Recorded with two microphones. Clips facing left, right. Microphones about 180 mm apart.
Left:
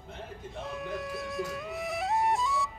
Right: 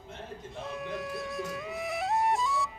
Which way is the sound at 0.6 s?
Centre (ahead or behind).